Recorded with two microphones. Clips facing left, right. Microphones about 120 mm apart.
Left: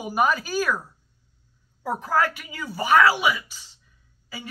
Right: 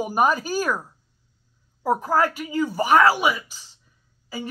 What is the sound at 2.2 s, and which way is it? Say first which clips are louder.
Speech: right 4 dB; 40° right (ahead or behind).